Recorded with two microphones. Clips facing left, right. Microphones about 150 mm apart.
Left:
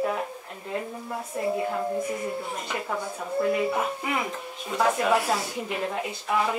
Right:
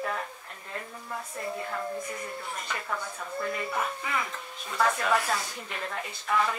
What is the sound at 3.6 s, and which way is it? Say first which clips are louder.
A woman's voice: left 5 dB; 20° left (ahead or behind).